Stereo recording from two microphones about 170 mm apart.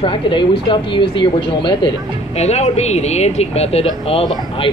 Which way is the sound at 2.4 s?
40° left (ahead or behind).